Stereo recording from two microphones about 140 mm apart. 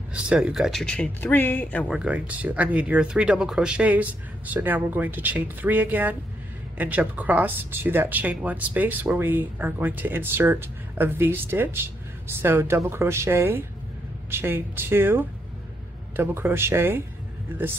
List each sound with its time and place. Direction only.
0.1 s speech: 5° right (ahead or behind); by 1.9 s 10° left (ahead or behind)
1.9 s speech: 5° right (ahead or behind)